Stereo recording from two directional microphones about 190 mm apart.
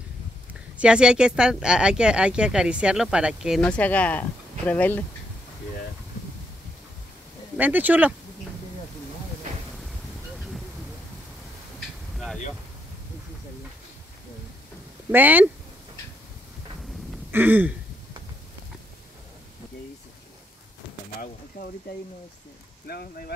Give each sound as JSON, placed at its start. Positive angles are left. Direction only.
{"t": 0.5, "sound": "speech", "side_deg": -5}
{"t": 7.5, "sound": "speech", "side_deg": -10}
{"t": 9.8, "sound": "vehicle", "side_deg": 0}
{"t": 15.0, "sound": "speech", "side_deg": -10}
{"t": 17.3, "sound": "speech", "side_deg": -10}
{"t": 22.8, "sound": "speech", "side_deg": 55}